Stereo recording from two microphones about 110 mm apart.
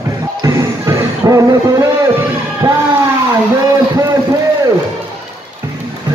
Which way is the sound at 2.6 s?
25° right (ahead or behind).